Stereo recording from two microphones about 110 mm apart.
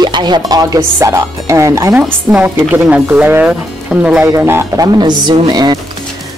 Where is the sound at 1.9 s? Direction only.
10° right (ahead or behind).